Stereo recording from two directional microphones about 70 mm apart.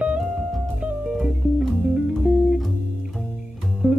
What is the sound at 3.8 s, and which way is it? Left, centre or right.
Music, right.